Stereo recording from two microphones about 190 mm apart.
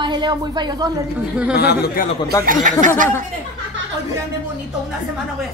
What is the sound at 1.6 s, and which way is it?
Speech, 60° left (ahead or behind).